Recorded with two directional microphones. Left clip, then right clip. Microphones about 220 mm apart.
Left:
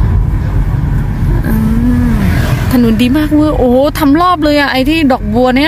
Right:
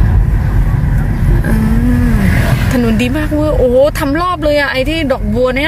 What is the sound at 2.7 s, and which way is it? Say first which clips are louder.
Speech: left 5 dB; 15° left (ahead or behind).